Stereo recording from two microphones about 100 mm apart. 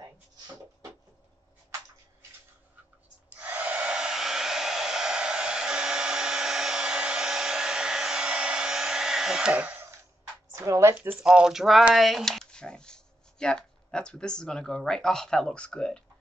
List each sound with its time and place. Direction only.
3.3 s hair dryer: 15° right (ahead or behind)
10.5 s a sound: 30° right (ahead or behind)
11.1 s speech: 5° right (ahead or behind)